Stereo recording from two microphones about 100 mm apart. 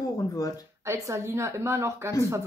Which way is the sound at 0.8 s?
30° right (ahead or behind).